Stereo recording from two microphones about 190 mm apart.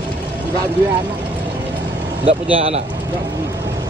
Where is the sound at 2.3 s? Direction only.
30° right (ahead or behind).